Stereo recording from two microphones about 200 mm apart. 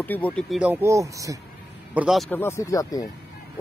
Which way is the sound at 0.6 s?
10° right (ahead or behind).